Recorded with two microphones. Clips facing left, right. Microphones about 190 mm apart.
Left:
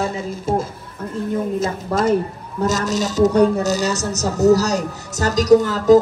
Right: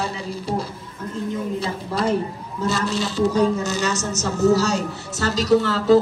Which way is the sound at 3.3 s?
65° left (ahead or behind).